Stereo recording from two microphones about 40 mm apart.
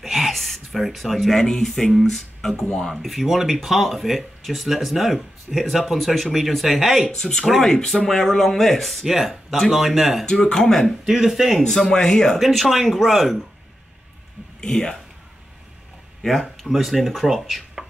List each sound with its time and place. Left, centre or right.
0.0 s a sound: centre
1.3 s speech: centre
2.9 s speech: centre
7.1 s speech: centre
7.4 s speech: centre
7.7 s speech: centre
9.0 s speech: centre
10.2 s speech: centre
11.1 s speech: centre
11.5 s speech: centre
12.4 s speech: centre
14.6 s speech: centre
16.2 s speech: centre
17.8 s chopping: centre